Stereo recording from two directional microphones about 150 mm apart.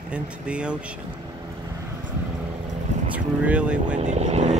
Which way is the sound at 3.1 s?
10° right (ahead or behind).